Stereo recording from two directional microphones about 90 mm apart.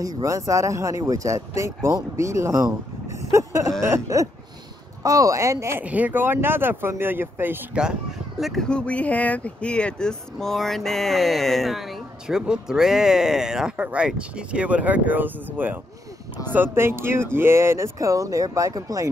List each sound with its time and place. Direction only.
0.0 s speech: 40° right (ahead or behind)
3.2 s a sound: 35° right (ahead or behind)
3.8 s speech: 35° right (ahead or behind)
5.9 s speech: 20° right (ahead or behind)
7.7 s speech: 10° right (ahead or behind)
8.6 s speech: 10° left (ahead or behind); by 19.0 s 40° right (ahead or behind)